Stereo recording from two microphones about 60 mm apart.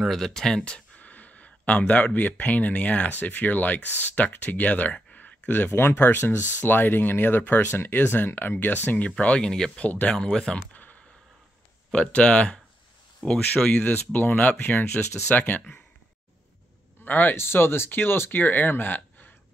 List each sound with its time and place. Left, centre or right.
0.0 s speech: centre; by 9.1 s left
9.2 s speech: centre
9.8 s speech: left
10.1 s speech: centre
10.7 s a sound: left
11.9 s speech: centre
17.0 s speech: left
17.4 s speech: left